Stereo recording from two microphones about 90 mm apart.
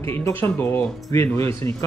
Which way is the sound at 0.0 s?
30° left (ahead or behind).